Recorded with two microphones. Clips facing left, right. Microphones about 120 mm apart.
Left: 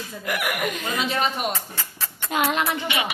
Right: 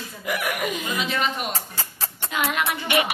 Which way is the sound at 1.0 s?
40° left (ahead or behind).